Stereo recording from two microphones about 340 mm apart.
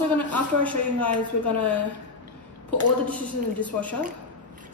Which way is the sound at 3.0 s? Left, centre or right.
Centre.